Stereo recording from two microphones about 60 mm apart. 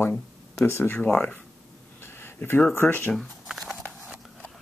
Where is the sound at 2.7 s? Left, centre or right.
Left.